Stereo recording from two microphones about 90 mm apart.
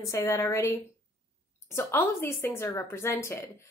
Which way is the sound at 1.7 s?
25° left (ahead or behind).